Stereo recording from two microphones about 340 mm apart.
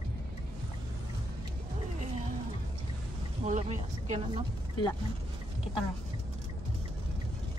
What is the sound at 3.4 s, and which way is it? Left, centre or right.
Speech, centre.